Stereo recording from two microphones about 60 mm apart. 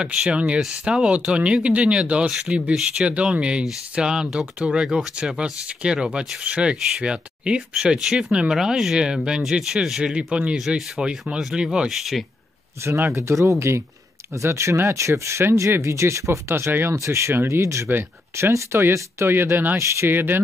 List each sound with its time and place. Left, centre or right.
0.0 s speech: centre
11.9 s speech: centre
12.8 s speech: right
16.9 s speech: right
19.2 s speech: right